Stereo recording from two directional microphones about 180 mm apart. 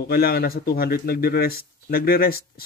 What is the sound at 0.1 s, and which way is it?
Speech, 55° left (ahead or behind).